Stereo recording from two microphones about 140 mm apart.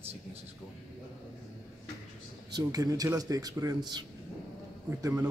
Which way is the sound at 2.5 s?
25° right (ahead or behind).